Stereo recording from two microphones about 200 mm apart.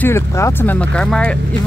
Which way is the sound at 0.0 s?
10° left (ahead or behind).